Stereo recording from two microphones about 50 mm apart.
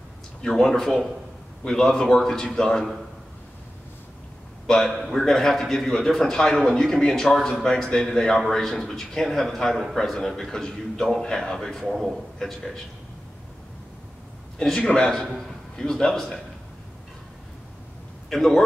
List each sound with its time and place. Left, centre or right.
0.4 s a man's voice: centre
4.6 s a man's voice: centre
14.8 s a man's voice: centre
18.3 s speech: centre